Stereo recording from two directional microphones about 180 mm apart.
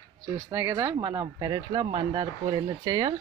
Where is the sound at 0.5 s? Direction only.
15° right (ahead or behind).